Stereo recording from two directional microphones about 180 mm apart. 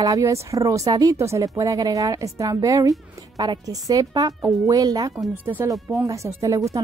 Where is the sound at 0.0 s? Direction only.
20° right (ahead or behind).